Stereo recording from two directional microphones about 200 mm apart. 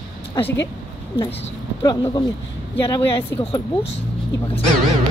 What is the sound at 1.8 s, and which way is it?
Speech, 20° left (ahead or behind).